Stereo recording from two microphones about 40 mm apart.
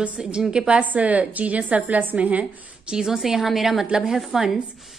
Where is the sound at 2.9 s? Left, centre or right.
Centre.